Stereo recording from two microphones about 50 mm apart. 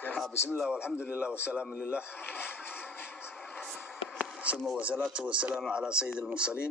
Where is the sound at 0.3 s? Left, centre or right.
Left.